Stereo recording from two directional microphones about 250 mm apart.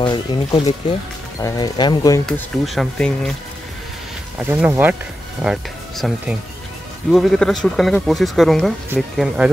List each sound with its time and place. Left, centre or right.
0.0 s speech: centre
2.2 s speech: centre
4.4 s speech: centre